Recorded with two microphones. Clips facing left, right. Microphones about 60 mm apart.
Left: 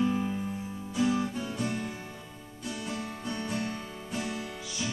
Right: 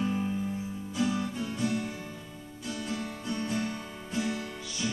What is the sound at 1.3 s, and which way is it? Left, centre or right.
Music, centre.